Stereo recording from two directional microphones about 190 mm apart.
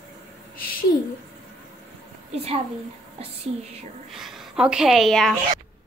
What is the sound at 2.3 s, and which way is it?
Speech, 30° right (ahead or behind).